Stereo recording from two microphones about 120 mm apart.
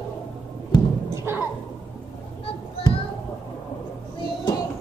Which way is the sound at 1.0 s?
20° right (ahead or behind).